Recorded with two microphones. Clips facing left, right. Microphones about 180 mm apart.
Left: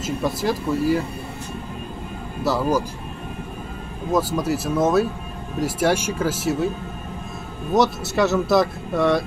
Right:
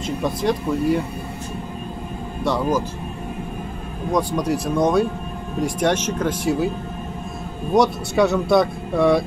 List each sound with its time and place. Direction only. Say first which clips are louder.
0.0 s speech: right 1 dB; 5° left (ahead or behind)
2.4 s speech: even; 5° left (ahead or behind)
4.1 s speech: even; 5° left (ahead or behind)
7.7 s speech: right 2 dB; centre (ahead or behind)